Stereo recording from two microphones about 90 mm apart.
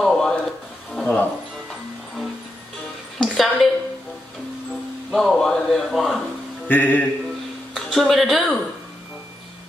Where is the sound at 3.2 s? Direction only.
Centre (ahead or behind).